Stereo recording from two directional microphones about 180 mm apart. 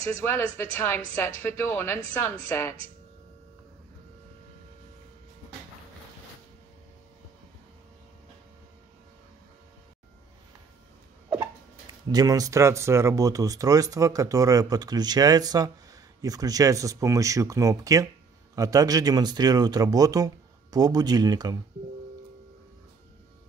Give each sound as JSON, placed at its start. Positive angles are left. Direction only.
{"t": 0.0, "sound": "speech", "side_deg": 15}
{"t": 12.1, "sound": "speech", "side_deg": -20}